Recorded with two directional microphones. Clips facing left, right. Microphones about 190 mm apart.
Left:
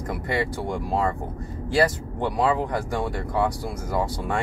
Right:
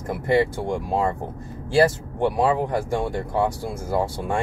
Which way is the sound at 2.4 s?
20° right (ahead or behind).